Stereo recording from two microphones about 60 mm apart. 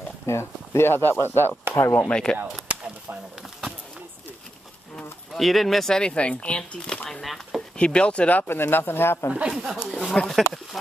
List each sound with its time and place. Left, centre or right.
0.3 s speech: left
2.0 s speech: centre
2.7 s a sound: right
5.3 s speech: centre
7.1 s speech: centre
7.7 s speech: centre
8.4 s speech: left
9.5 s speech: centre